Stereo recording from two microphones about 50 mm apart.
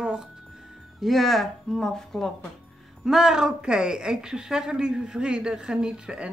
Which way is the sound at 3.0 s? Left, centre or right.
Centre.